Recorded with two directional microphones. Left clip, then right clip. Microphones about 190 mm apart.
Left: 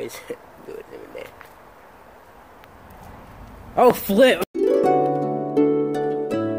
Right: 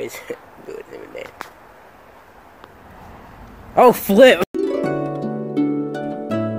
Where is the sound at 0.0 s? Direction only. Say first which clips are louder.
Right 3 dB; 15° right (ahead or behind).